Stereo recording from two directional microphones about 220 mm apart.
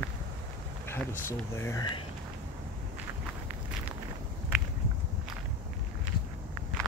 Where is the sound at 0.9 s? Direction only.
10° left (ahead or behind).